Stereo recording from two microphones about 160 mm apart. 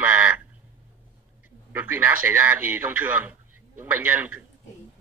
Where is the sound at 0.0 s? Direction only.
10° right (ahead or behind).